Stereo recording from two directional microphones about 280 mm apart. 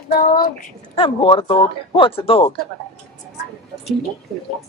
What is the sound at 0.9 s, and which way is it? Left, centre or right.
Speech, centre.